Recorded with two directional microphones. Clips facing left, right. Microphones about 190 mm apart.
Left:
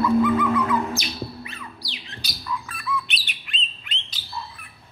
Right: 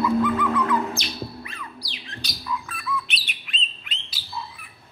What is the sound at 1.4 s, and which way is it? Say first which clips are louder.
Music: even; 20° left (ahead or behind).